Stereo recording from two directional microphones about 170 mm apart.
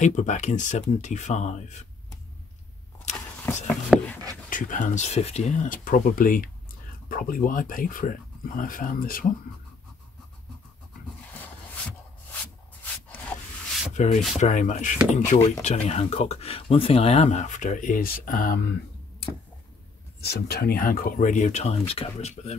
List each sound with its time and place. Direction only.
0.0 s speech: 45° left (ahead or behind)
3.1 s vehicle: 45° left (ahead or behind)
3.9 s a sound: 5° right (ahead or behind)
4.5 s speech: 50° left (ahead or behind)
13.9 s speech: 45° left (ahead or behind)
20.2 s speech: 70° left (ahead or behind); by 22.6 s 40° left (ahead or behind)